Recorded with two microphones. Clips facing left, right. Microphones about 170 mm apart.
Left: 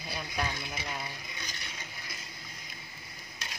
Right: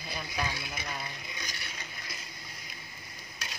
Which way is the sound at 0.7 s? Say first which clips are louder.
Left 1 dB; 5° left (ahead or behind).